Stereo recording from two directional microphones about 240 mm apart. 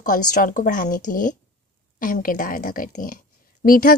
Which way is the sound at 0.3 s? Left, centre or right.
Left.